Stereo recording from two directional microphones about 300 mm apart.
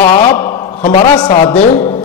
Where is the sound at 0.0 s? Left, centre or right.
Left.